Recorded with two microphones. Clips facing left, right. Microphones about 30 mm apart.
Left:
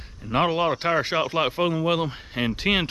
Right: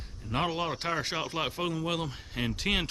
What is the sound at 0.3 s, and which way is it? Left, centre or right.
Speech, left.